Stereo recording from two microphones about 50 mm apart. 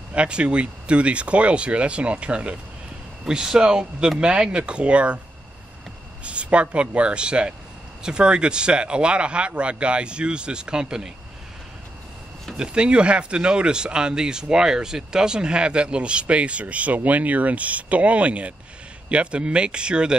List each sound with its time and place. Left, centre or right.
0.1 s speech: right
6.2 s speech: right
12.5 s speech: centre